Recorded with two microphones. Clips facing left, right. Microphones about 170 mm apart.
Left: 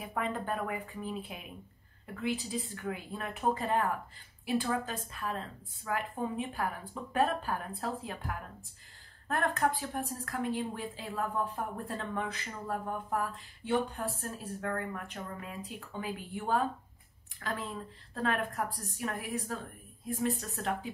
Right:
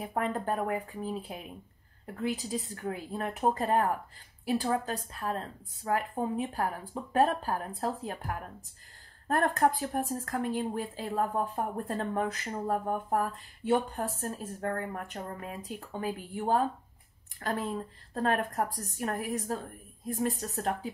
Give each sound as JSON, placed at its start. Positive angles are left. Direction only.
{"t": 0.0, "sound": "a woman's voice", "side_deg": -40}